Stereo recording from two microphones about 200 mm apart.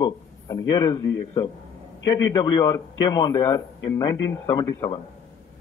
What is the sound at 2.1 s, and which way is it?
A man's voice, 20° left (ahead or behind).